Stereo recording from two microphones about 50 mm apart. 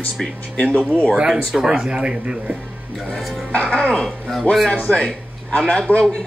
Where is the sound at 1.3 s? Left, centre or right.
Centre.